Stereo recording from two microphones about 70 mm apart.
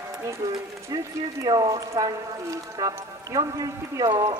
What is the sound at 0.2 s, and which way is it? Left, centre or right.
Speech, right.